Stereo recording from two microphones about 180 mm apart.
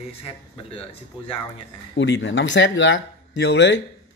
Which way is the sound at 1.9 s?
90° left.